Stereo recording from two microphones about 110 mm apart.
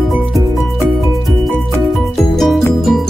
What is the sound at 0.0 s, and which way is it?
Music, centre (ahead or behind).